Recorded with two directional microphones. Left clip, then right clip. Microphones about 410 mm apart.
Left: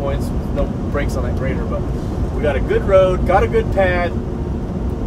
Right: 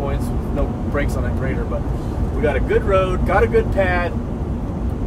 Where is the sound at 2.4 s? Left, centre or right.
Centre.